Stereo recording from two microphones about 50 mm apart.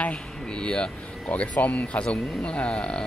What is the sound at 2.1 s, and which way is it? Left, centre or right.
Speech, centre.